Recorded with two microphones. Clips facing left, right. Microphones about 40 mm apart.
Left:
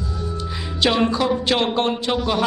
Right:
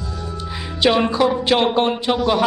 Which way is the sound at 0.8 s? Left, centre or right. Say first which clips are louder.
Right 3 dB; centre.